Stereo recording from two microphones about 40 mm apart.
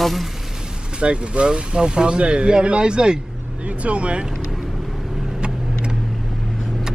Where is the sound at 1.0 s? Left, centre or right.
Right.